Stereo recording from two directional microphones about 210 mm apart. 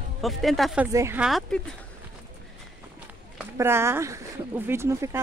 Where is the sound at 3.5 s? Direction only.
10° right (ahead or behind).